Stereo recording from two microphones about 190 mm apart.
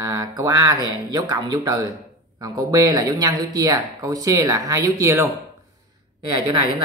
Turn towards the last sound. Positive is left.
turn(degrees=-25)  # may be behind; listen again after turning